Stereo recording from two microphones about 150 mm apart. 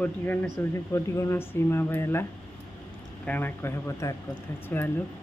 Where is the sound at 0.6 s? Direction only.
15° left (ahead or behind).